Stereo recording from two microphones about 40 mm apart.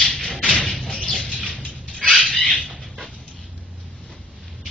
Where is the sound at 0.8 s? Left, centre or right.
Left.